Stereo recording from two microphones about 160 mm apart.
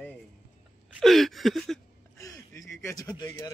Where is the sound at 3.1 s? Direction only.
20° left (ahead or behind).